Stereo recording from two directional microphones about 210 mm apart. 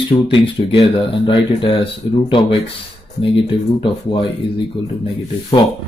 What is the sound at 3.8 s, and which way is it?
Speech, 25° left (ahead or behind).